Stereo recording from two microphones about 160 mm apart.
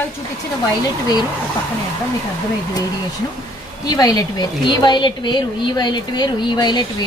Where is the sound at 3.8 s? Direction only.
25° left (ahead or behind).